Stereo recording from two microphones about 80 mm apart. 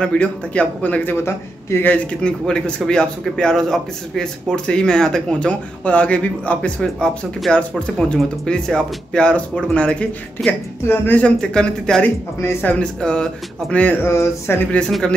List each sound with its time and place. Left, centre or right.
0.0 s speech: centre
11.5 s speech: centre
14.0 s speech: left